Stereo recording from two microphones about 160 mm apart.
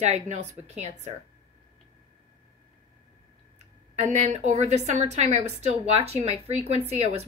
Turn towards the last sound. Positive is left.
turn(degrees=-40)  # may be behind; listen again after turning